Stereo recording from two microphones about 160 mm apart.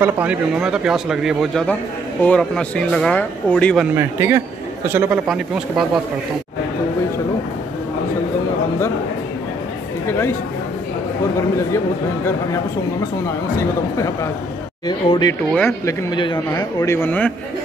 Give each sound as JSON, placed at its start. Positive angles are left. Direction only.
{"t": 0.0, "sound": "a man's voice", "side_deg": -10}
{"t": 3.8, "sound": "speech", "side_deg": -15}
{"t": 10.0, "sound": "speech", "side_deg": 15}
{"t": 14.9, "sound": "speech", "side_deg": 25}
{"t": 15.5, "sound": "speech", "side_deg": 15}